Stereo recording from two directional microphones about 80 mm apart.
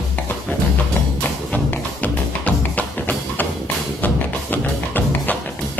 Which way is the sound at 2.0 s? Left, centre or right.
Centre.